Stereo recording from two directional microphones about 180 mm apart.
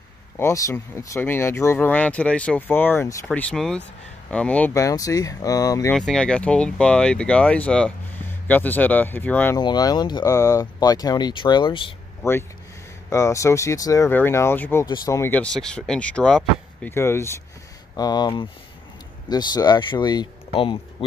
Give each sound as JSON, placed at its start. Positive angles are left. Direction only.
{"t": 0.4, "sound": "speech", "side_deg": 15}
{"t": 3.3, "sound": "speech", "side_deg": 5}
{"t": 5.9, "sound": "speech", "side_deg": 5}
{"t": 9.6, "sound": "speech", "side_deg": 25}
{"t": 12.2, "sound": "speech", "side_deg": 15}